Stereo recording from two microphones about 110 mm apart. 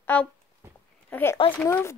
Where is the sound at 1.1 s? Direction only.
20° left (ahead or behind).